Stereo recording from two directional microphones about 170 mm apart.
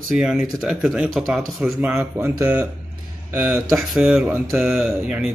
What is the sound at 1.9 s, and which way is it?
Speech, 10° right (ahead or behind).